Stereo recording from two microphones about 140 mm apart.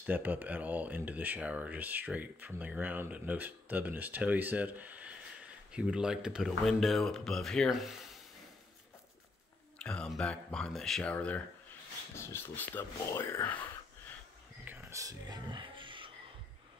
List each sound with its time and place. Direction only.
0.0 s speech: 15° right (ahead or behind)
9.8 s speech: 5° left (ahead or behind)
14.6 s music: 10° right (ahead or behind); by 16.1 s 35° right (ahead or behind)